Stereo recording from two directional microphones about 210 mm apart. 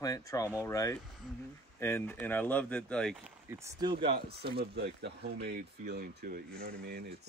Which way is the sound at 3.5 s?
15° right (ahead or behind).